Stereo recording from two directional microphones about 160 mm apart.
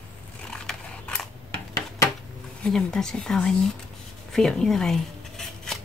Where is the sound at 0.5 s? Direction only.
5° left (ahead or behind).